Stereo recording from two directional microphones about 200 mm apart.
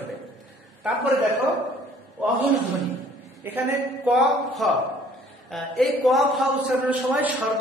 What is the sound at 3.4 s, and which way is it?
A man's voice, 10° right (ahead or behind).